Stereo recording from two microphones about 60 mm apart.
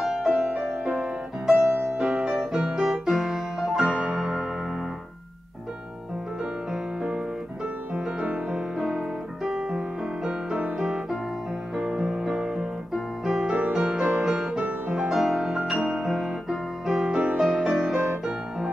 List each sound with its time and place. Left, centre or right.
0.0 s music: centre
3.9 s music: centre
6.7 s music: centre
8.7 s music: centre
11.7 s piano: centre
13.7 s music: centre
14.6 s music: right
15.0 s music: centre
15.9 s piano: centre
16.3 s music: centre